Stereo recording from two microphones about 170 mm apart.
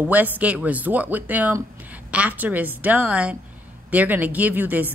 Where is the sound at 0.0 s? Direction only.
10° right (ahead or behind).